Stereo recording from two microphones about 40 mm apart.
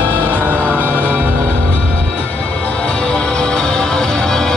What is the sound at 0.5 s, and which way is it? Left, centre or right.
Music, left.